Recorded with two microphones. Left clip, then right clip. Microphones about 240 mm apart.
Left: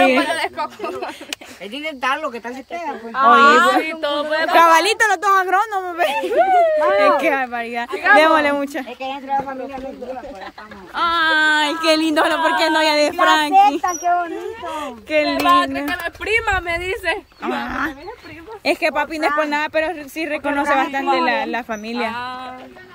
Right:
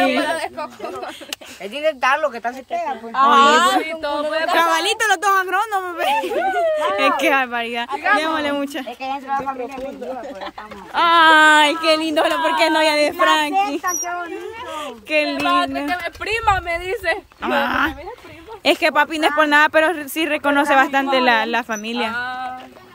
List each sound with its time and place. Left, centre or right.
0.0 s speech: centre
1.7 s speech: centre
3.1 s a child's voice: right
3.8 s speech: centre
11.0 s speech: centre
11.8 s speech: centre
13.6 s speech: left
14.7 s speech: centre